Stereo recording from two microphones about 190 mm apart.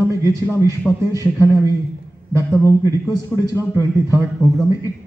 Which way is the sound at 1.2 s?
15° left (ahead or behind).